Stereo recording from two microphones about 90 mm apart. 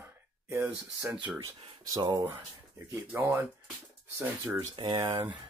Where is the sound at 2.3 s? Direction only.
25° right (ahead or behind).